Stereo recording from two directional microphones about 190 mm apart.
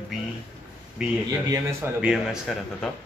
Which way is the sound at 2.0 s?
Centre (ahead or behind).